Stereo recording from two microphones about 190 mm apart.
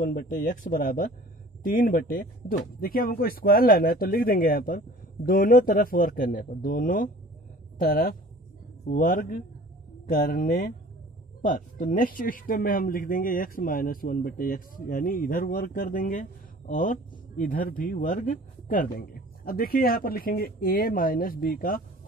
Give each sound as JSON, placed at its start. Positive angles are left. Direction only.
{"t": 0.0, "sound": "speech", "side_deg": 50}